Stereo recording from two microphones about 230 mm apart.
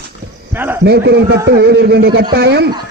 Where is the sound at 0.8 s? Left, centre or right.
Right.